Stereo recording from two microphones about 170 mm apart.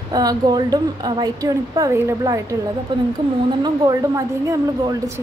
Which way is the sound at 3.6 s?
20° right (ahead or behind).